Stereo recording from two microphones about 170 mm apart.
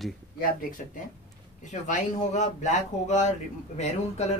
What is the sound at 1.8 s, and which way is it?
Speech, 45° left (ahead or behind).